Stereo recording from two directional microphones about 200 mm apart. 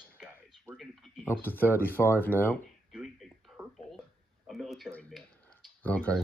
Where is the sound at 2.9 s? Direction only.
5° right (ahead or behind).